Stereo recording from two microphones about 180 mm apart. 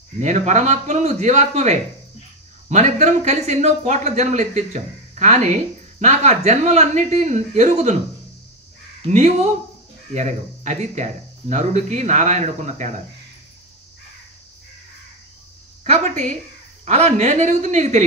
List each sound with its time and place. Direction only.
0.2 s speech: 40° right (ahead or behind)
9.1 s speech: 40° right (ahead or behind)
15.8 s a woman's voice: 40° right (ahead or behind)